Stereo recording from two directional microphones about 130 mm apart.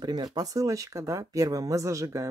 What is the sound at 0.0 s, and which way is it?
Speech, 35° right (ahead or behind).